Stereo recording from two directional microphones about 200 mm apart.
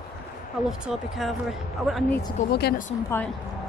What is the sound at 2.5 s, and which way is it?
Speech, 50° left (ahead or behind).